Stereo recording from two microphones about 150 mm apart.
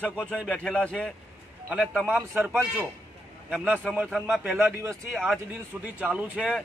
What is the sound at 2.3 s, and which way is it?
Speech, 15° right (ahead or behind).